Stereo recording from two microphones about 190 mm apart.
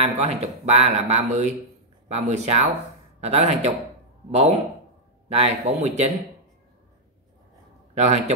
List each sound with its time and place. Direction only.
0.0 s speech: 35° right (ahead or behind)
5.3 s speech: 35° right (ahead or behind)
7.9 s a man's voice: 35° right (ahead or behind)